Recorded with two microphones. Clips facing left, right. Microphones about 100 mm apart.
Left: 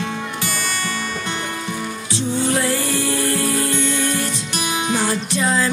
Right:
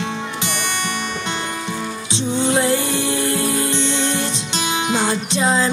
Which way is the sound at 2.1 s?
20° right (ahead or behind).